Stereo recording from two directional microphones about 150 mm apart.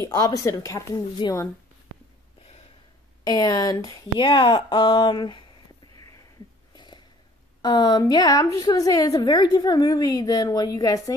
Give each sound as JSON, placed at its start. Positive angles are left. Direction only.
{"t": 0.0, "sound": "a woman's voice", "side_deg": 20}
{"t": 3.3, "sound": "a woman's voice", "side_deg": 25}
{"t": 6.7, "sound": "a sound", "side_deg": 30}
{"t": 7.6, "sound": "a woman's voice", "side_deg": 30}